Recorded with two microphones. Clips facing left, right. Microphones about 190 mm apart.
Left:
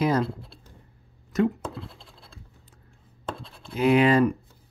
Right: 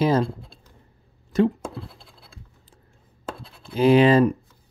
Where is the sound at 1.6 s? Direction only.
5° right (ahead or behind).